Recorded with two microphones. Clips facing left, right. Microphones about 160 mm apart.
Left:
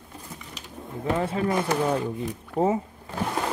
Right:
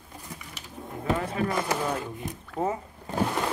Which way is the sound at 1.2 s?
30° left (ahead or behind).